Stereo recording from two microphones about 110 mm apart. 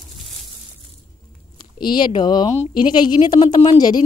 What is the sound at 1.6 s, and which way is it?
A woman's voice, 45° left (ahead or behind).